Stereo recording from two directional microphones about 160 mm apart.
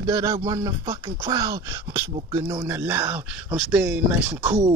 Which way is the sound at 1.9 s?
20° right (ahead or behind).